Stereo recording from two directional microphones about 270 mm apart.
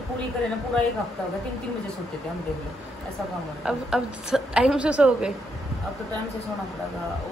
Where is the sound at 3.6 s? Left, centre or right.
Centre.